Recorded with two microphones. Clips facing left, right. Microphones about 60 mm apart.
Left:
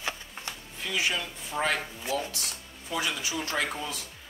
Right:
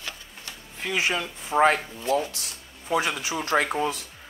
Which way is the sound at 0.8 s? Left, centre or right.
Right.